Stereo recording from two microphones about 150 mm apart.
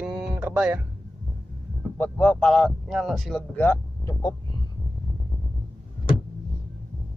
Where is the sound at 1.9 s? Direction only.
10° left (ahead or behind).